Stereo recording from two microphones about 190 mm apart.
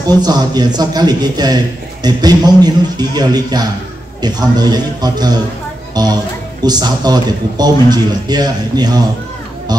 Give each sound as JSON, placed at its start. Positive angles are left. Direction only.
{"t": 0.0, "sound": "a man's voice", "side_deg": -20}